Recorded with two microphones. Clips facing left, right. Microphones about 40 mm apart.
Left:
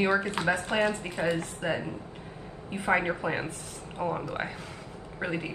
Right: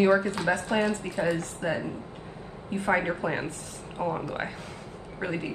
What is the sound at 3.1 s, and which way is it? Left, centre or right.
A woman's voice, centre.